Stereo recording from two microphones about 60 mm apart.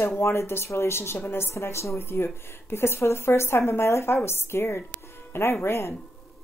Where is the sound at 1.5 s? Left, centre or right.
Left.